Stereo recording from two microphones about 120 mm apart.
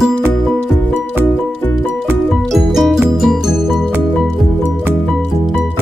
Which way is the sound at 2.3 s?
Centre (ahead or behind).